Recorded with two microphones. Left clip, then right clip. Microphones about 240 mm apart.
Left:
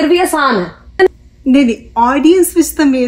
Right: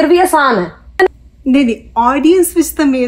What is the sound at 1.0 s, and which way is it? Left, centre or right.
Speech, centre.